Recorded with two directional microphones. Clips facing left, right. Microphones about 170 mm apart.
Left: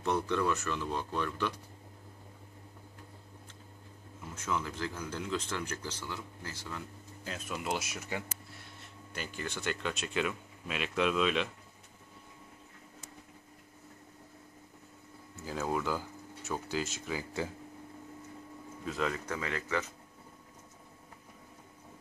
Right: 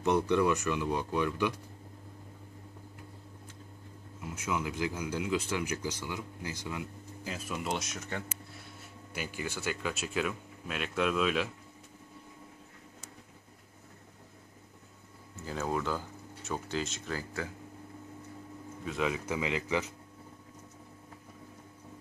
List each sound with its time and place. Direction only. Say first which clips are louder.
0.0 s speech: right 4 dB; 15° right (ahead or behind)
4.2 s speech: right 1 dB; 10° right (ahead or behind)
15.4 s speech: even; 5° left (ahead or behind)
17.4 s speech: left 2 dB; 30° left (ahead or behind)
18.9 s speech: right 2 dB; 5° right (ahead or behind)